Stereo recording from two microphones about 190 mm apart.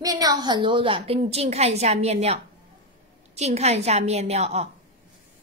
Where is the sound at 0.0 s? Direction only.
20° right (ahead or behind); by 4.6 s 35° right (ahead or behind).